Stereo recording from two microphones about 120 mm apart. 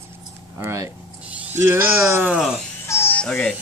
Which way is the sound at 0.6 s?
25° right (ahead or behind).